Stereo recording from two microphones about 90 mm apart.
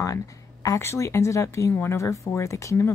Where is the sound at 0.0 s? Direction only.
40° left (ahead or behind).